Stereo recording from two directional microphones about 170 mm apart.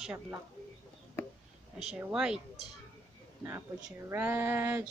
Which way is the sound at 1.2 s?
15° left (ahead or behind).